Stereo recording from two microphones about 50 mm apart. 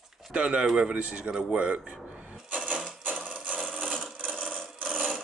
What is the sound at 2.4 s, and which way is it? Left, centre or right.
Sewing machine, right.